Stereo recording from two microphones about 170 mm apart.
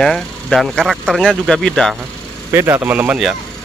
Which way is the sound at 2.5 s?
15° right (ahead or behind).